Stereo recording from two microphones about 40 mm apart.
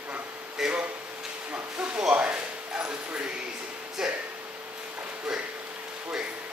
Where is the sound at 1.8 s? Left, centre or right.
Right.